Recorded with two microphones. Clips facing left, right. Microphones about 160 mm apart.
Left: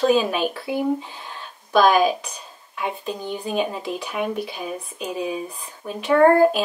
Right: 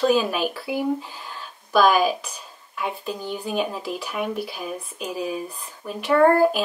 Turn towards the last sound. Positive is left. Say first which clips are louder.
# left 2 dB
turn(degrees=0)  # may be behind; listen again after turning